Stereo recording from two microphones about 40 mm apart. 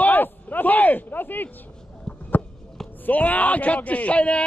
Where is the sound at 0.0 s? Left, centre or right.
Left.